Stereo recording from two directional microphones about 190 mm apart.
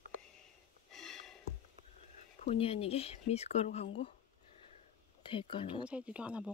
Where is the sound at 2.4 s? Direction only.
35° left (ahead or behind).